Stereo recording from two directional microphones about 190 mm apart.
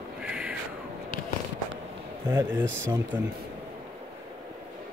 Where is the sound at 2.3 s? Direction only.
10° right (ahead or behind).